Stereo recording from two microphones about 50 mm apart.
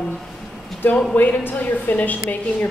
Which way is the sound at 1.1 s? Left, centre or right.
Left.